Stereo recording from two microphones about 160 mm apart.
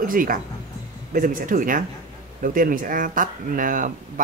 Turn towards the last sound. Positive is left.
turn(degrees=-55)  # may be behind; listen again after turning